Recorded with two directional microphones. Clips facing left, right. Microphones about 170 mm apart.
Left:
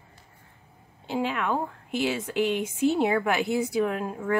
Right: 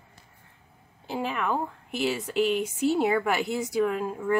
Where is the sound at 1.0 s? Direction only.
Centre (ahead or behind).